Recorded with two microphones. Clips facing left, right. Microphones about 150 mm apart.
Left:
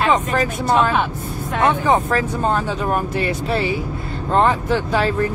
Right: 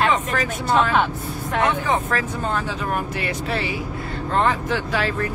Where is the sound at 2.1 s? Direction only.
30° left (ahead or behind).